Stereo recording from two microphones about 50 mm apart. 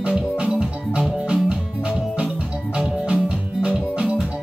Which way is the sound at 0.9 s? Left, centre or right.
Right.